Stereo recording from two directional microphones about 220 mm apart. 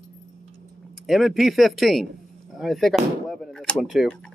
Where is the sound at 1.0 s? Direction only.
Centre (ahead or behind).